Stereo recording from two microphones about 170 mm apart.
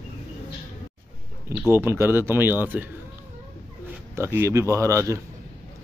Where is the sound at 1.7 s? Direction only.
15° right (ahead or behind).